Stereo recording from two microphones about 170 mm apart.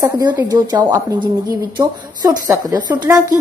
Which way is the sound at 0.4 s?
20° right (ahead or behind).